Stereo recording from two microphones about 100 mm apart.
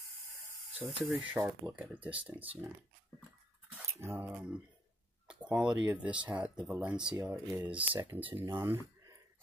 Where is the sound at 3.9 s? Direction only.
25° right (ahead or behind).